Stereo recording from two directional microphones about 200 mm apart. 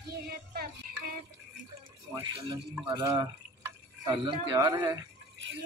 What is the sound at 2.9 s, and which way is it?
Speech, 15° right (ahead or behind).